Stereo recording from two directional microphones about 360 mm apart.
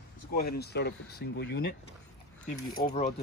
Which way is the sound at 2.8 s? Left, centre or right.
Centre.